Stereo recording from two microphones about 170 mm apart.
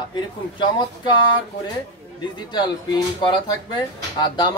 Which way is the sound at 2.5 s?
25° left (ahead or behind).